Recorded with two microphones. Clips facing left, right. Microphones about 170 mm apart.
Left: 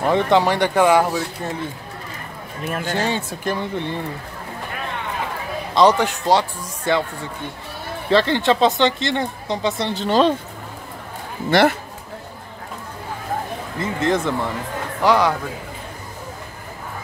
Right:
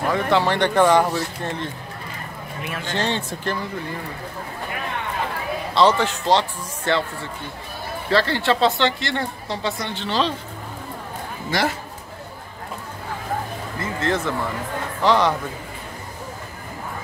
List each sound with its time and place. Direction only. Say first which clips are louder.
0.1 s speech: left 3 dB; 15° left (ahead or behind)
2.6 s speech: left 6 dB; 45° left (ahead or behind)
2.9 s speech: even; 10° left (ahead or behind)
5.8 s speech: left 2 dB; 15° left (ahead or behind)
8.1 s speech: left 3 dB; 20° left (ahead or behind)
9.8 s speech: left 8 dB; 45° left (ahead or behind)
11.5 s a man's voice: left 8 dB; 60° left (ahead or behind)
13.7 s speech: left 3 dB; 15° left (ahead or behind)